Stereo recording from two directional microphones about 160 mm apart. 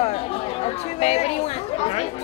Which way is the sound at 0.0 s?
40° left (ahead or behind).